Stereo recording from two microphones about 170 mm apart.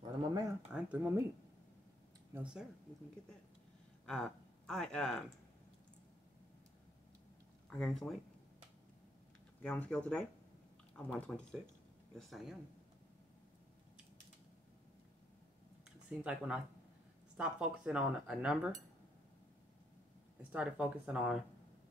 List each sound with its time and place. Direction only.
0.0 s a sound: 20° right (ahead or behind)
0.7 s speech: 5° right (ahead or behind)
2.3 s speech: 5° right (ahead or behind)
4.0 s speech: 5° left (ahead or behind)
7.7 s speech: 5° left (ahead or behind)
9.6 s speech: 5° left (ahead or behind)
16.1 s speech: 5° right (ahead or behind)
20.5 s speech: 5° right (ahead or behind)